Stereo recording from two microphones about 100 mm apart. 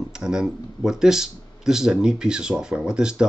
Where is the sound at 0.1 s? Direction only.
5° right (ahead or behind).